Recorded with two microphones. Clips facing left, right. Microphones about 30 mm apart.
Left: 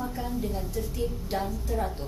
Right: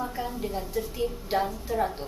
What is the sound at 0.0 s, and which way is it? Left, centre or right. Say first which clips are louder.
Speech: even; centre.